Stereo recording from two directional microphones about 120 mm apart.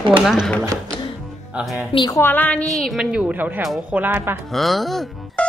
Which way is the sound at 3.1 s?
15° right (ahead or behind).